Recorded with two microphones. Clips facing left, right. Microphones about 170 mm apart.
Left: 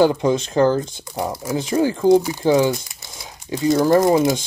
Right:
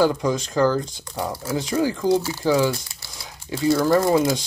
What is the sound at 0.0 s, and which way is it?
Speech, 25° left (ahead or behind).